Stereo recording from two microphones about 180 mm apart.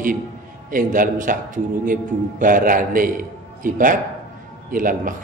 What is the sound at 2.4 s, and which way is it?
A man's voice, 50° right (ahead or behind).